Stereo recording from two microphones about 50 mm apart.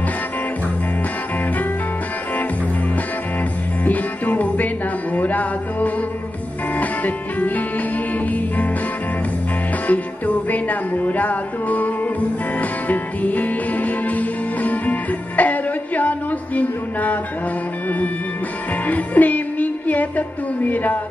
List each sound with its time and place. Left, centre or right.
3.8 s music: left
9.8 s music: left